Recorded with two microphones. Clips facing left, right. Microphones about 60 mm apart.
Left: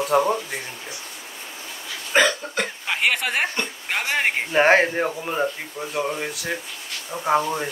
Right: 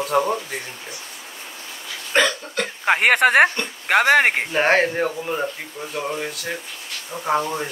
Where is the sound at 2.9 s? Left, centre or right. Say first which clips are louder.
Right 9 dB; right.